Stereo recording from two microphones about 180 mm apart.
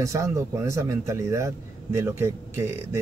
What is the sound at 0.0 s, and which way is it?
Speech, 15° right (ahead or behind).